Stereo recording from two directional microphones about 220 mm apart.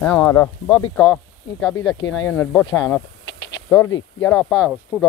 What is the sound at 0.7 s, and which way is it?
Speech, 25° left (ahead or behind).